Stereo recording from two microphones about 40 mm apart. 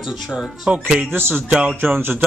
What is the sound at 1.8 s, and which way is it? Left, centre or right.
Speech, right.